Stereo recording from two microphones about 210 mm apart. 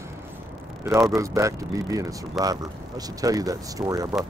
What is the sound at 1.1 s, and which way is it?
Speech, 15° right (ahead or behind).